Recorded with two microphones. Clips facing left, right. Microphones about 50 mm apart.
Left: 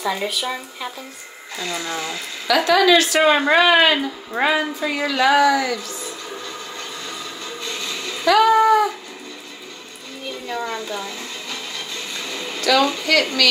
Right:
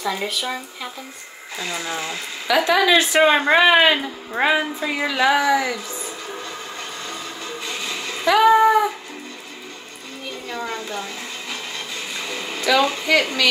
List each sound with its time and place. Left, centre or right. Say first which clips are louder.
0.0 s speech: left 1 dB; centre
1.6 s speech: left 1 dB; centre
7.6 s cat: even; centre
10.5 s speech: left 2 dB; centre
11.9 s a sound: right 1 dB; centre